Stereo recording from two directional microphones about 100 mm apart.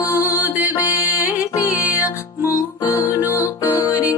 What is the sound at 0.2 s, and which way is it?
Music, 20° right (ahead or behind).